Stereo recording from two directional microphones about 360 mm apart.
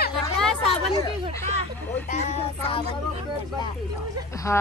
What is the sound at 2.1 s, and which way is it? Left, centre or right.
Child singing, centre.